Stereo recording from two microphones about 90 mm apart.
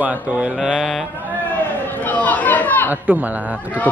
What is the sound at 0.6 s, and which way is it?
Mantra, 5° right (ahead or behind).